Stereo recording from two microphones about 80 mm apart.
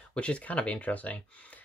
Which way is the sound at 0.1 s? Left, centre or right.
Centre.